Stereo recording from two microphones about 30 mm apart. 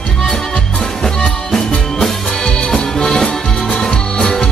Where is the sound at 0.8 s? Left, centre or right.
Centre.